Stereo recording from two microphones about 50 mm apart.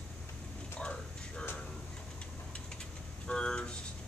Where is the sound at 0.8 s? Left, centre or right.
Left.